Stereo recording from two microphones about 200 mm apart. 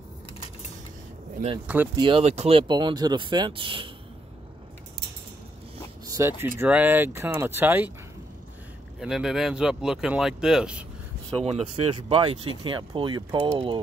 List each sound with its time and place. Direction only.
2.0 s speech: 25° right (ahead or behind)
6.0 s speech: 15° right (ahead or behind)
9.0 s speech: 5° right (ahead or behind)
11.4 s speech: 30° right (ahead or behind)